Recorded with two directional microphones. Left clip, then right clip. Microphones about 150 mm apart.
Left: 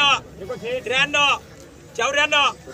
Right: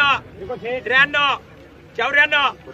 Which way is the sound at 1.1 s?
55° right (ahead or behind).